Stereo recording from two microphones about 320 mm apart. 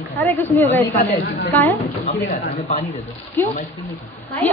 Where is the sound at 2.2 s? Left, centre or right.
Left.